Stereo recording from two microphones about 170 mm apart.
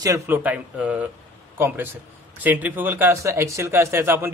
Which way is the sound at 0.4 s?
10° right (ahead or behind).